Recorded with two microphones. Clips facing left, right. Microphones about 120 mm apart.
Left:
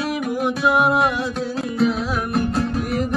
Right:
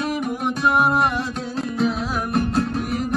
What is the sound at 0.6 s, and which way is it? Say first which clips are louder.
Music: left 1 dB; centre (ahead or behind).